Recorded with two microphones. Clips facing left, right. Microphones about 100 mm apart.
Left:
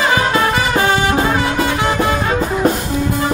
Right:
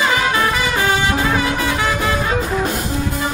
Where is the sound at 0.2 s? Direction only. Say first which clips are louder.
Left 2 dB; 30° left (ahead or behind).